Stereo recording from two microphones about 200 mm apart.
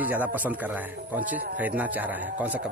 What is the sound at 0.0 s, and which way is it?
A man's voice, 10° right (ahead or behind).